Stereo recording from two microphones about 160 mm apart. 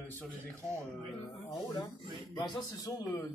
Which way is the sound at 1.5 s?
25° left (ahead or behind).